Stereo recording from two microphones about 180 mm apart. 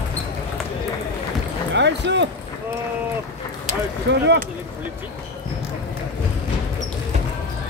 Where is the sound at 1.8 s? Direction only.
75° right (ahead or behind).